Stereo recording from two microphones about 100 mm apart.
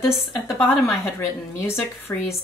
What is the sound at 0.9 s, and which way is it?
Speech, 25° left (ahead or behind).